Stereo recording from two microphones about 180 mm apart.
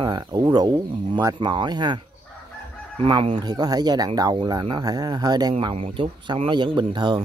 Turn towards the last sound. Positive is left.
turn(degrees=-25)  # may be behind; listen again after turning